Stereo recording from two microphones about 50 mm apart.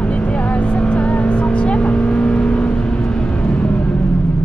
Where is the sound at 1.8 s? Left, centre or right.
Centre.